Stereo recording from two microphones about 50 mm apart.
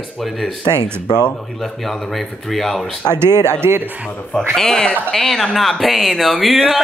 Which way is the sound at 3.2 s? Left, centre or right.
Right.